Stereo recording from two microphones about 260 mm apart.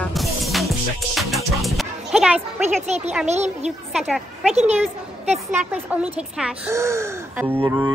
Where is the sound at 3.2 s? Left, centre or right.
Right.